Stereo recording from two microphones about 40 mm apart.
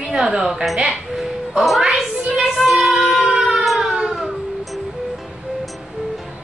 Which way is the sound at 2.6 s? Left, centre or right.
Centre.